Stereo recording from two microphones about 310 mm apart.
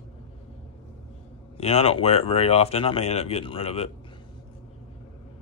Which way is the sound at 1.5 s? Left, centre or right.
Centre.